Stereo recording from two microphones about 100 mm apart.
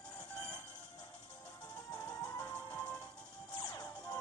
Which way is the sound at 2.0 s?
30° left (ahead or behind).